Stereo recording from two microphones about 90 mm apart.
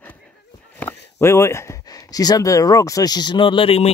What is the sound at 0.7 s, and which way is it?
Speech, 25° left (ahead or behind).